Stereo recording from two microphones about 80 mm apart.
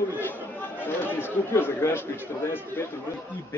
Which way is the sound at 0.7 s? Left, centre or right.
Left.